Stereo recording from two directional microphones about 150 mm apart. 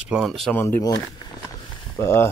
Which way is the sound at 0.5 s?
15° left (ahead or behind).